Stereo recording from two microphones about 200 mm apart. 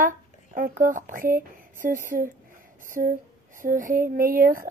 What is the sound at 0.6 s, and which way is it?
Speech, 45° right (ahead or behind).